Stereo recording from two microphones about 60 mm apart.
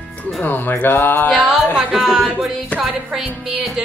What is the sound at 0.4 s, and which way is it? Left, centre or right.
Speech, left.